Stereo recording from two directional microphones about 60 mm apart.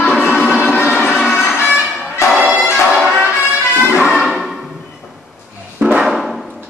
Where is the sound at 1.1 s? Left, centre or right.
Centre.